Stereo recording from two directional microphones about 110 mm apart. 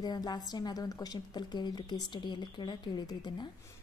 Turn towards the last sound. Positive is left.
turn(degrees=40)  # may be behind; listen again after turning